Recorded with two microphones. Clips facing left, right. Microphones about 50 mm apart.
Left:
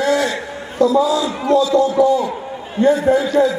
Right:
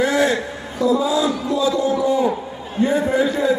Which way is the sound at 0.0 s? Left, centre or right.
Right.